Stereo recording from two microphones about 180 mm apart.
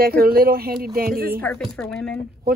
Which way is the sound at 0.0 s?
55° right (ahead or behind).